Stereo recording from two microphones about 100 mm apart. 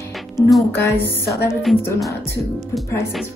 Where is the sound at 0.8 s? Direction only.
25° left (ahead or behind).